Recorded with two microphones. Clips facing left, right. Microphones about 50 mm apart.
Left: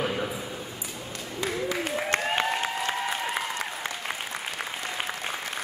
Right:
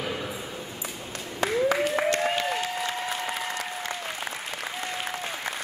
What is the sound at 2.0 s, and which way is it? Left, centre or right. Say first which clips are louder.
Applause: right 1 dB; left.